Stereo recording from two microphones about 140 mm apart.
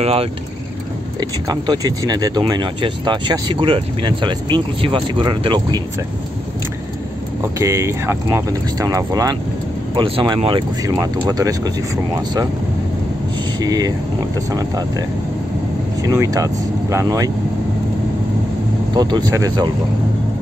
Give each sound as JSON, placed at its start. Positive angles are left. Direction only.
{"t": 0.0, "sound": "speech", "side_deg": -45}
{"t": 1.5, "sound": "speech", "side_deg": -30}
{"t": 7.5, "sound": "speech", "side_deg": -20}
{"t": 9.9, "sound": "speech", "side_deg": -40}
{"t": 13.6, "sound": "speech", "side_deg": -30}
{"t": 18.9, "sound": "speech", "side_deg": -30}